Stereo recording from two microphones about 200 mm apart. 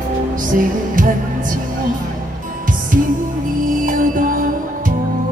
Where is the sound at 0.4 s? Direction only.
40° right (ahead or behind).